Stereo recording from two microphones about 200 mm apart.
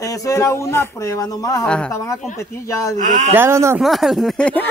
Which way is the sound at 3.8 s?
Centre (ahead or behind).